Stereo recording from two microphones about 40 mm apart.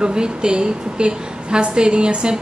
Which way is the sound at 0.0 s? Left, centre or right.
Right.